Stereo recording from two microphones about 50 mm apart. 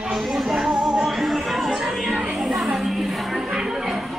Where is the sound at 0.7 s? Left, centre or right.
Centre.